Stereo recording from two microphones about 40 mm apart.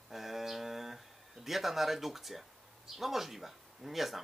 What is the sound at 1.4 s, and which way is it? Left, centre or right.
Speech, centre.